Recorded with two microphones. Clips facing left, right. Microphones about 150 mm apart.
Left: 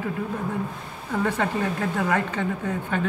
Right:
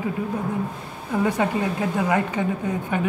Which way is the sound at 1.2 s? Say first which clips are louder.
Right 3 dB; 15° right (ahead or behind).